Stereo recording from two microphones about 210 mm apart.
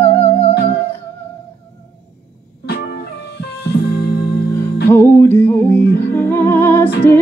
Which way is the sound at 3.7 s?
50° left (ahead or behind).